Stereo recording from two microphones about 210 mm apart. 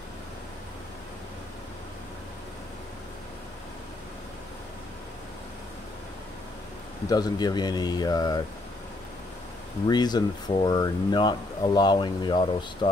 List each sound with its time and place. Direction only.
7.1 s speech: 20° left (ahead or behind)
9.8 s speech: 20° left (ahead or behind)